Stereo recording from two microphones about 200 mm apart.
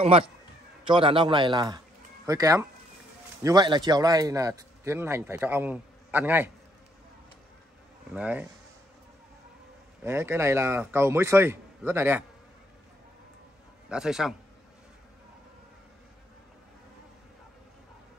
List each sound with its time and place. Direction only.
0.8 s a man's voice: 25° right (ahead or behind); by 6.5 s 10° right (ahead or behind)
8.1 s a man's voice: 5° right (ahead or behind)
10.0 s a man's voice: 10° right (ahead or behind)
13.8 s a man's voice: 5° right (ahead or behind)